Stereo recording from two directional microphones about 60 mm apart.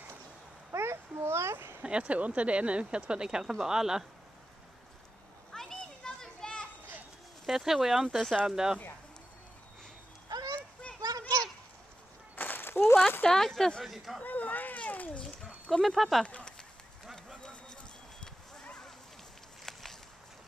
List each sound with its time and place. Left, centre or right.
0.7 s a sound: right
1.8 s speech: centre
5.5 s children playing: centre
7.4 s speech: centre
11.0 s children playing: right
12.4 s a sound: left
13.2 s speech: centre
14.2 s speech: left
15.7 s speech: centre
16.3 s a sound: centre
17.1 s run: centre
18.2 s a sound: centre
19.6 s walk: centre